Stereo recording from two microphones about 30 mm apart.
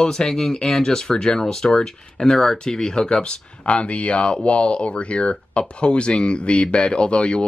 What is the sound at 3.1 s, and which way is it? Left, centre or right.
Speech, left.